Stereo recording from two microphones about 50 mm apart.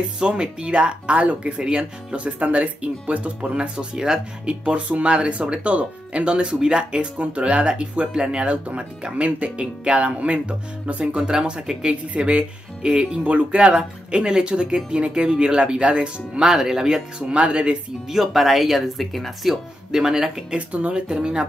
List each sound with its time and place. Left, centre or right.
0.2 s speech: centre
18.0 s speech: centre
20.5 s speech: right